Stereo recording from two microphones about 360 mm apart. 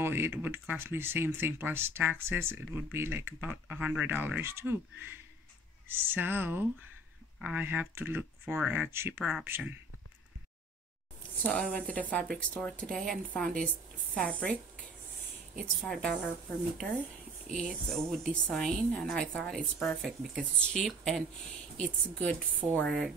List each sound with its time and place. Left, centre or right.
0.0 s speech: centre
11.4 s speech: centre
17.6 s speech: centre